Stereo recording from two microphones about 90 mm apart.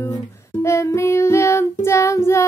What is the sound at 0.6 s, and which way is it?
Child singing, 30° left (ahead or behind).